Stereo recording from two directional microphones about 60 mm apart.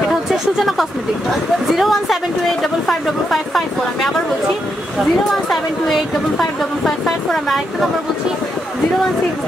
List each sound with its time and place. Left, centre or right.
0.3 s a sound: centre
1.7 s speech: centre
5.5 s a woman's voice: centre